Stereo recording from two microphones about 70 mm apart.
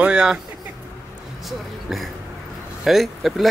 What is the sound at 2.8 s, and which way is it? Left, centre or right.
Speech, centre.